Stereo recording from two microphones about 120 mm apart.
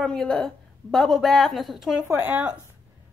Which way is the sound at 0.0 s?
5° left (ahead or behind).